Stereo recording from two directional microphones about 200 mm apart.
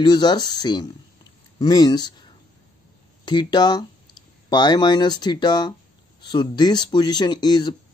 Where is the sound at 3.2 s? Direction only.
20° left (ahead or behind).